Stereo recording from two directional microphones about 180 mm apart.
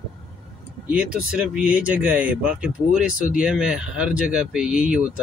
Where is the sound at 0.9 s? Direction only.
5° right (ahead or behind).